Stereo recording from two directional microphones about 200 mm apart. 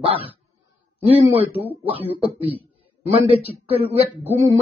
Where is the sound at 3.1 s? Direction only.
30° right (ahead or behind).